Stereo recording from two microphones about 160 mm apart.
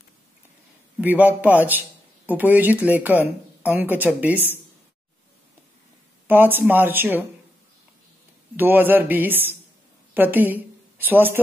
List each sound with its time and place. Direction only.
1.0 s a man's voice: 10° right (ahead or behind)
6.2 s a man's voice: 10° right (ahead or behind)
8.5 s a man's voice: 10° right (ahead or behind)